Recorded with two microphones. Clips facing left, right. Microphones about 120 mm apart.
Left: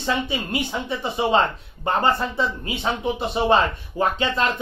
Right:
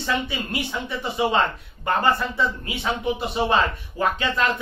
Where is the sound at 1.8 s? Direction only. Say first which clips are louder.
Left 1 dB; 25° left (ahead or behind).